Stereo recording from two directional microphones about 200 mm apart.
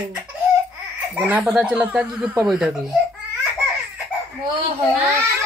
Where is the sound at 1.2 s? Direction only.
10° right (ahead or behind).